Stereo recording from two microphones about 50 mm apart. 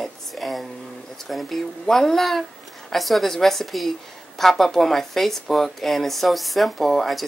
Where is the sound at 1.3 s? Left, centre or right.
Centre.